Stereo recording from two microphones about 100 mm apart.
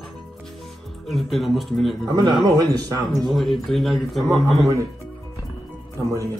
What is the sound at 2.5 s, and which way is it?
Speech, 40° right (ahead or behind).